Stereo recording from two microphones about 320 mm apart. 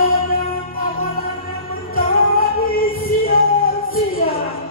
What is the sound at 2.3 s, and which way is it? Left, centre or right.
Music, left.